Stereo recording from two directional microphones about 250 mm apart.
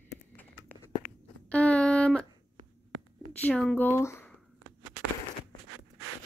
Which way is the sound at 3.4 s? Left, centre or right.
Centre.